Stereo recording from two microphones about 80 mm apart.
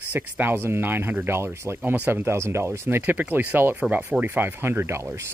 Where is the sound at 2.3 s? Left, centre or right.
Right.